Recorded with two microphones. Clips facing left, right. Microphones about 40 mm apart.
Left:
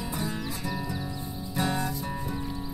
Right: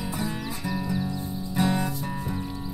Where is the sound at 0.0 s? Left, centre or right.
Centre.